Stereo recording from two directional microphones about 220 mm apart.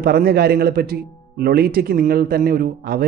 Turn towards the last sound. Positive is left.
turn(degrees=-45)  # may be behind; listen again after turning